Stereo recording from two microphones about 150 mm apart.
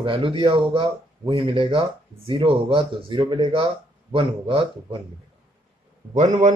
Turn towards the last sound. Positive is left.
turn(degrees=-55)  # may be behind; listen again after turning